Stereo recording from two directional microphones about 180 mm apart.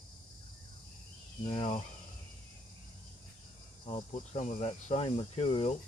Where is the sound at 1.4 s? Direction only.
30° left (ahead or behind).